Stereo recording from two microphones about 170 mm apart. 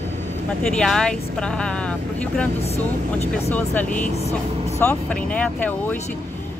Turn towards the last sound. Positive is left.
turn(degrees=10)  # may be behind; listen again after turning